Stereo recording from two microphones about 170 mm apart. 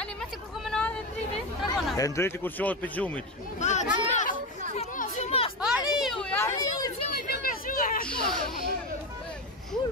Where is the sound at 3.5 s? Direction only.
45° left (ahead or behind).